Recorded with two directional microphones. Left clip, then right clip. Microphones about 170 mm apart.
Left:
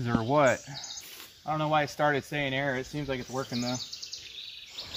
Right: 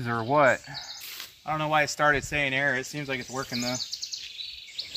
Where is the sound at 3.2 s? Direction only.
10° right (ahead or behind).